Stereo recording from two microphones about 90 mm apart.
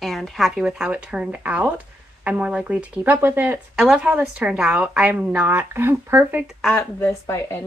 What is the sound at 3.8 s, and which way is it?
A woman's voice, 5° right (ahead or behind).